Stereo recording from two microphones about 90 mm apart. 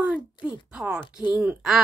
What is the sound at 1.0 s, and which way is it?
Speech, 50° left (ahead or behind).